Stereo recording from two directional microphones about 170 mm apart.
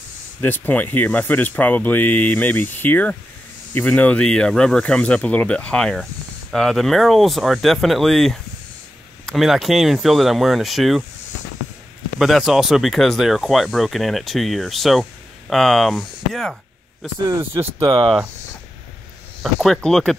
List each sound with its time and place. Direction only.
0.4 s speech: 10° left (ahead or behind)
12.2 s speech: centre (ahead or behind)
17.3 s speech: 15° right (ahead or behind)
19.4 s speech: centre (ahead or behind)